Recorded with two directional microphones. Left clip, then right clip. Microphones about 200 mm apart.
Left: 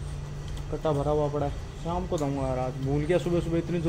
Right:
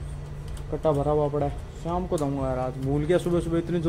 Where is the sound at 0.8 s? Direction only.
25° right (ahead or behind).